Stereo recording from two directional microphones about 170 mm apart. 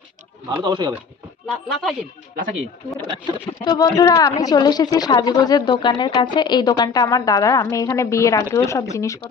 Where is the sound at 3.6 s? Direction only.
25° left (ahead or behind).